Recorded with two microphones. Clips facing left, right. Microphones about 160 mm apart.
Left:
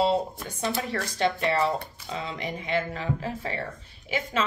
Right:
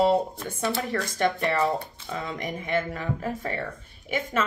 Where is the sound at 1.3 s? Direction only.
15° left (ahead or behind).